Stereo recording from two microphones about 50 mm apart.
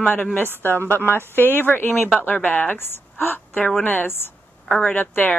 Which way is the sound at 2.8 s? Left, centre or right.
Left.